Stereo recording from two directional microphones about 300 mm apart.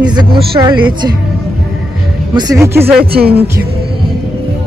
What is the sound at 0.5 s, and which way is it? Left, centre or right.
Speech, centre.